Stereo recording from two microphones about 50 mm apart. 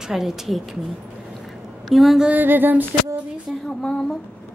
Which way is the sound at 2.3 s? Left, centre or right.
Right.